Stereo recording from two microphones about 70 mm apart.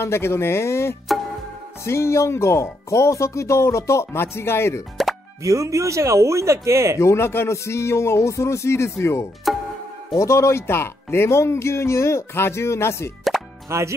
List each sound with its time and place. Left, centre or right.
0.0 s speech: left
5.4 s speech: right
7.0 s speech: left
13.7 s speech: right